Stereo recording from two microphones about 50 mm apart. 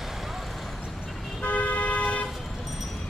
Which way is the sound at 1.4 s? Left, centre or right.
Left.